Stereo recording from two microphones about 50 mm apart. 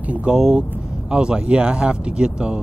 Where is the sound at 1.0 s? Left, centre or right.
Centre.